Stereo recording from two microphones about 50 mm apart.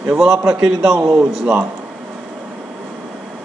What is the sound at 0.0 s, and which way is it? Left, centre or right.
A man's voice, centre.